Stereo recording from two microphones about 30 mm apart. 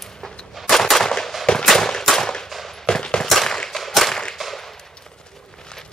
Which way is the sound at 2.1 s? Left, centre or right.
Centre.